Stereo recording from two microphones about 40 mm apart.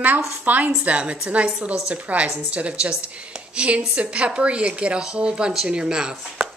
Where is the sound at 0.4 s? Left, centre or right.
Right.